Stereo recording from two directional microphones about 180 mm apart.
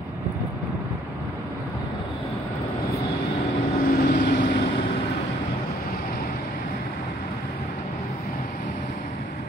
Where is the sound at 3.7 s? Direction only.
55° left (ahead or behind).